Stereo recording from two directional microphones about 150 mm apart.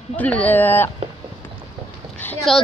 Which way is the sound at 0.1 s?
10° left (ahead or behind).